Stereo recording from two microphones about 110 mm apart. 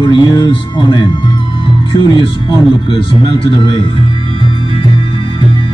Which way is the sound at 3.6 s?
50° left (ahead or behind).